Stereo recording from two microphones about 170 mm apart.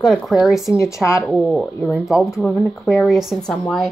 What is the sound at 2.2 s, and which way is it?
Speech, 15° left (ahead or behind).